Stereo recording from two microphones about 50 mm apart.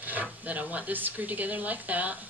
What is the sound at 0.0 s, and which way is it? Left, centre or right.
Speech, right.